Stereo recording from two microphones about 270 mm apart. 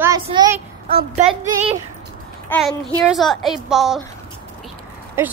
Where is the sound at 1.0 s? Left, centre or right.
Right.